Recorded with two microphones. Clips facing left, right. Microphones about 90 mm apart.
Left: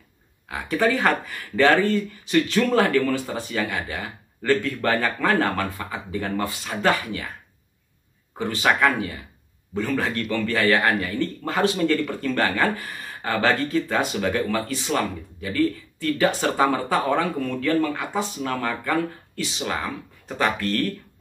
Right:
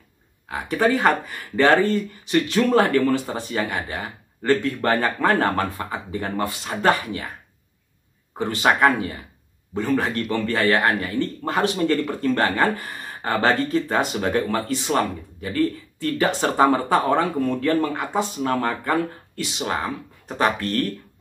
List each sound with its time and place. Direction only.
0.5 s speech: 25° right (ahead or behind)
8.4 s speech: 30° right (ahead or behind)